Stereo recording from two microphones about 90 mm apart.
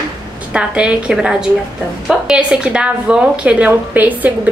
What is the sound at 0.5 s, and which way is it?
A woman's voice, 10° right (ahead or behind).